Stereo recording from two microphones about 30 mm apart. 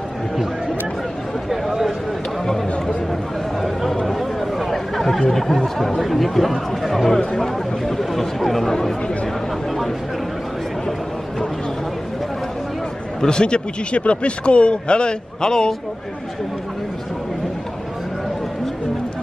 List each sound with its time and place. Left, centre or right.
4.2 s chatter: centre
5.3 s speech: centre
13.2 s a man's voice: left